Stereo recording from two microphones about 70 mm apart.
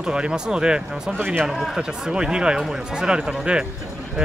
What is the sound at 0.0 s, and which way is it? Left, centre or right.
Speech, centre.